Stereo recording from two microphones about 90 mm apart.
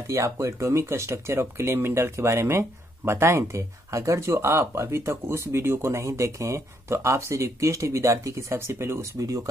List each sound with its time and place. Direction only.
0.0 s speech: 35° right (ahead or behind)